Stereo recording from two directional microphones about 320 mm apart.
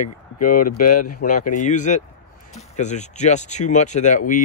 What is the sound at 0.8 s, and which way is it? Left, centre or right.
Speech, left.